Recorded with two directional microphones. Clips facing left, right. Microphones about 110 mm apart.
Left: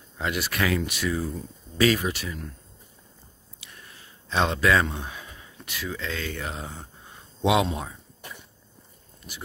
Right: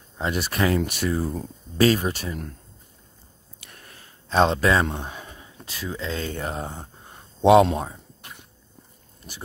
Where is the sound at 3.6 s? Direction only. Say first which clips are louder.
Right 1 dB; 45° right (ahead or behind).